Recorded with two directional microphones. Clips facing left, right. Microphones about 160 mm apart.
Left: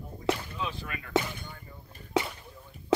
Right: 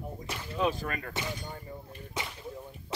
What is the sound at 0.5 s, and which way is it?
Speech, 45° right (ahead or behind).